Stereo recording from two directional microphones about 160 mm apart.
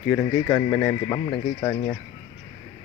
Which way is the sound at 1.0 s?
25° left (ahead or behind).